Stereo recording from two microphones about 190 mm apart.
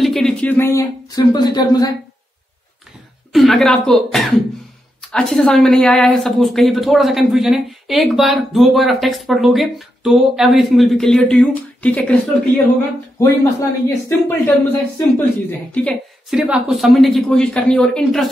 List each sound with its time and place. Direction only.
0.0 s speech: centre (ahead or behind); by 1.9 s 20° left (ahead or behind)
3.3 s a woman's voice: centre (ahead or behind)
13.2 s a woman's voice: 15° left (ahead or behind)